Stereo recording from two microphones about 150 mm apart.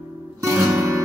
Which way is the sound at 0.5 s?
15° right (ahead or behind).